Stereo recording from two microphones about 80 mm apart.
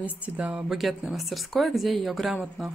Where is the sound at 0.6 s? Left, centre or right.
Centre.